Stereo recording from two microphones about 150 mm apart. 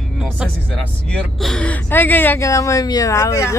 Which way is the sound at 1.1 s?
5° left (ahead or behind).